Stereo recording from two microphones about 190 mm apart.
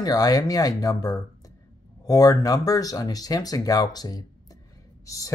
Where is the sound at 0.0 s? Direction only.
20° left (ahead or behind).